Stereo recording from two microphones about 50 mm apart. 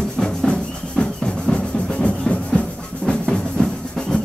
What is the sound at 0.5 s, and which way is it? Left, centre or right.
Music, centre.